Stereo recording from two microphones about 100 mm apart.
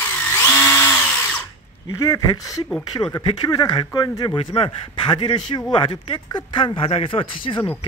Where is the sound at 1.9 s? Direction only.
35° left (ahead or behind).